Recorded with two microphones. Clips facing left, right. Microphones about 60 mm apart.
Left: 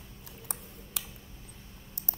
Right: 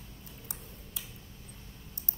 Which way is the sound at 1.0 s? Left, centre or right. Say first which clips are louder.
Left 5 dB; left.